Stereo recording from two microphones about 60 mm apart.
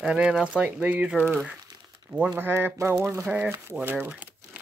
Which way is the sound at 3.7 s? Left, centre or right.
Right.